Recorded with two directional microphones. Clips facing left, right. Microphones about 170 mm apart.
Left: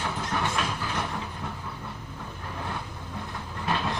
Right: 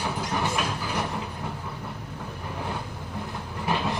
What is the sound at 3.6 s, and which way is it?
Train, 15° right (ahead or behind).